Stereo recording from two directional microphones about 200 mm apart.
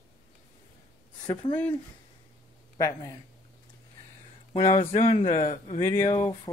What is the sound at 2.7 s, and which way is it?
Speech, 15° left (ahead or behind).